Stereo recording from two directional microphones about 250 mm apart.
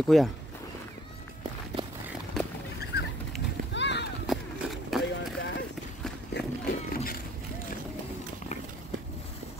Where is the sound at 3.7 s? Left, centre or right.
Left.